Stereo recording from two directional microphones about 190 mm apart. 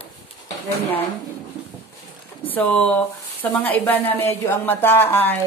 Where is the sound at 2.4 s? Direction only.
10° left (ahead or behind).